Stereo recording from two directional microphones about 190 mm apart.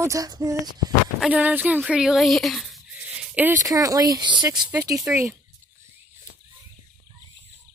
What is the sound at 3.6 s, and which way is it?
Speech, 20° right (ahead or behind).